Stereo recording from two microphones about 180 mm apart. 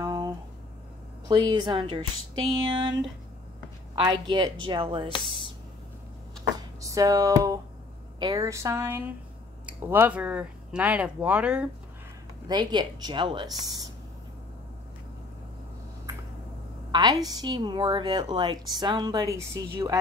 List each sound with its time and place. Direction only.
0.0 s a sound: 20° right (ahead or behind)
1.3 s a woman's voice: 25° right (ahead or behind)
6.8 s music: 20° right (ahead or behind)
8.2 s speech: 20° right (ahead or behind); by 11.7 s 5° right (ahead or behind)
12.4 s a woman's voice: 25° right (ahead or behind)
16.9 s a woman's voice: 20° right (ahead or behind)